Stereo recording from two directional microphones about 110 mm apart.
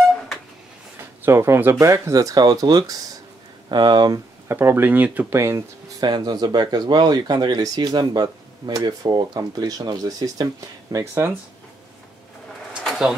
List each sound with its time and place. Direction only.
1.2 s speech: 25° right (ahead or behind); by 4.2 s 40° right (ahead or behind)
4.5 s speech: 20° right (ahead or behind)
5.9 s speech: 40° right (ahead or behind)
12.8 s pigeon: 5° left (ahead or behind)